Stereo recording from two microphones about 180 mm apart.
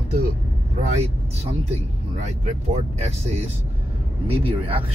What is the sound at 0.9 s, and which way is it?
Speech, 35° right (ahead or behind).